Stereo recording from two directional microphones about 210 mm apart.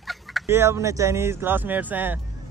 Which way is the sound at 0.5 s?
15° right (ahead or behind).